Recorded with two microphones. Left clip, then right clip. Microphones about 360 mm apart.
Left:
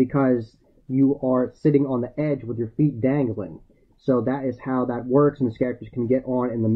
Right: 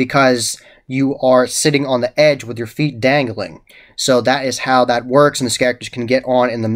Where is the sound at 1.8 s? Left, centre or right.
Right.